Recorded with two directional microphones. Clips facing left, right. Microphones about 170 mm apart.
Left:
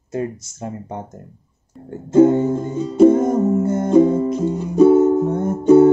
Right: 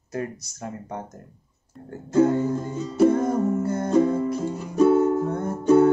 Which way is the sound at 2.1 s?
25° left (ahead or behind).